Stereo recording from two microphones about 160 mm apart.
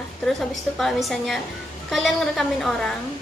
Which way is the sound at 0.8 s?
Centre (ahead or behind).